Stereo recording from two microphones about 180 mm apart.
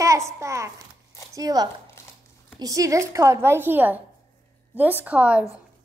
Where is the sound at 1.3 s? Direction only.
20° right (ahead or behind).